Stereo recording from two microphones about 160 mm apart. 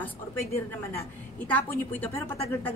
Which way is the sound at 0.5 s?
15° left (ahead or behind).